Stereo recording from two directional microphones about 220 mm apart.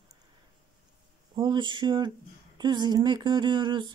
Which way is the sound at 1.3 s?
20° right (ahead or behind).